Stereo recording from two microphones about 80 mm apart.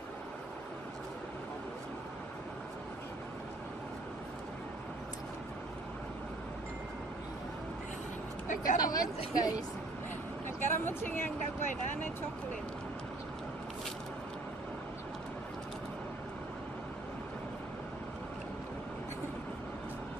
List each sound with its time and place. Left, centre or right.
8.7 s speech: left
10.6 s speech: left